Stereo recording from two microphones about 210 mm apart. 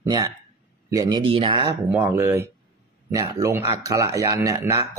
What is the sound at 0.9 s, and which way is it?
Speech, 20° right (ahead or behind).